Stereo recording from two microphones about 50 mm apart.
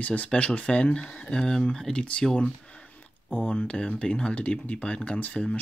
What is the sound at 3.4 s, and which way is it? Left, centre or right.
Speech, left.